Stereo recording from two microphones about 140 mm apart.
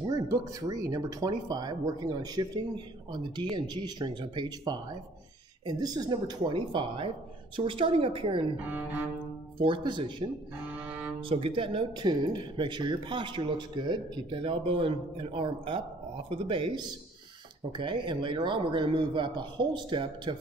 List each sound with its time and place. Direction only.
0.0 s speech: 25° right (ahead or behind)
9.6 s speech: 35° right (ahead or behind)
10.8 s music: 10° right (ahead or behind)
11.1 s speech: 40° right (ahead or behind)